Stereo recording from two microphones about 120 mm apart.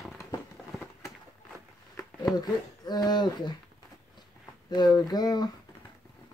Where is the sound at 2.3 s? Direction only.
35° left (ahead or behind).